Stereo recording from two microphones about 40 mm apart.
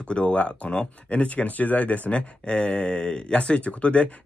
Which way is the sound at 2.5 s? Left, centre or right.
Left.